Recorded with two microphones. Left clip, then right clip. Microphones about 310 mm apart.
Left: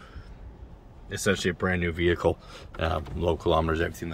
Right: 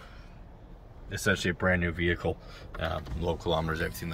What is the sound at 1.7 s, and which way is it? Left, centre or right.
Speech, centre.